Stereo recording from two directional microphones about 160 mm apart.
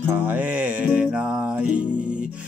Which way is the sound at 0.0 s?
10° right (ahead or behind).